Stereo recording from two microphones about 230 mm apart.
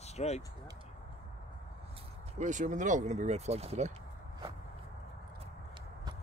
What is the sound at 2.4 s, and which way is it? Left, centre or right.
Speech, right.